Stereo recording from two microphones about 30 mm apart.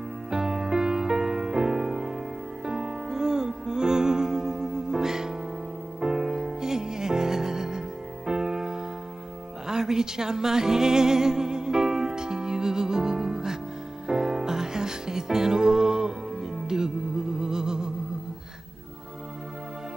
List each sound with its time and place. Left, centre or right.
0.3 s music: centre